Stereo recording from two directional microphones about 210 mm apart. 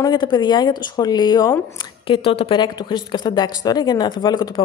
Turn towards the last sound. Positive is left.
turn(degrees=20)  # may be behind; listen again after turning